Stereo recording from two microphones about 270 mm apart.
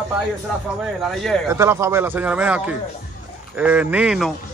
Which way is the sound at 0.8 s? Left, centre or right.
Centre.